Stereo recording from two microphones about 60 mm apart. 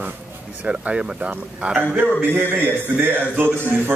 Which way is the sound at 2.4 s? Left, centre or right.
Right.